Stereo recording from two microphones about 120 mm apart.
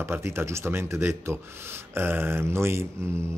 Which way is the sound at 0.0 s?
20° right (ahead or behind).